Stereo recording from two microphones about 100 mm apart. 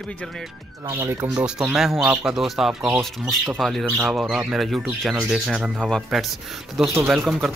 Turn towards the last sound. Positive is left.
turn(degrees=0)  # may be behind; listen again after turning